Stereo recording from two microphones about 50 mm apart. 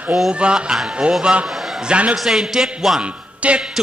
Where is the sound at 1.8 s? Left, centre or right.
Right.